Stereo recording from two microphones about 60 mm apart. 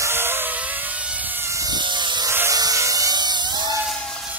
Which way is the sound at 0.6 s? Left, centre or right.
Right.